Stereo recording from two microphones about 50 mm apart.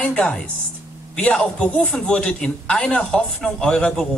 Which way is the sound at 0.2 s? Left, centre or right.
Centre.